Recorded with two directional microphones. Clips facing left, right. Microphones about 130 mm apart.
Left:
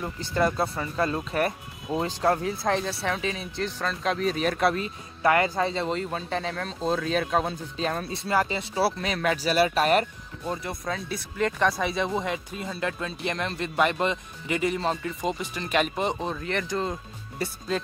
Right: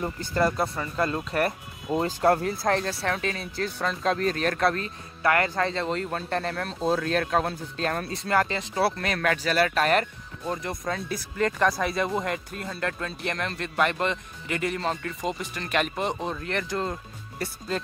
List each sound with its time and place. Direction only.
0.4 s speech: centre (ahead or behind)
5.2 s speech: 20° left (ahead or behind)
5.5 s speech: 5° left (ahead or behind)